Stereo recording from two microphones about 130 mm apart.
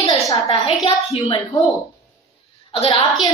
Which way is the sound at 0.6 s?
50° left (ahead or behind).